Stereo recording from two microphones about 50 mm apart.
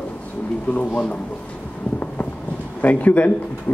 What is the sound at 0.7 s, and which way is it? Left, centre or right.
Speech, left.